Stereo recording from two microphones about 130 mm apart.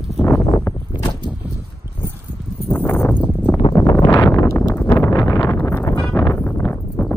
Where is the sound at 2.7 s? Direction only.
15° left (ahead or behind).